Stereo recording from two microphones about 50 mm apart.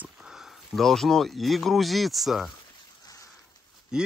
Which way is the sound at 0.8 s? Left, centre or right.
Centre.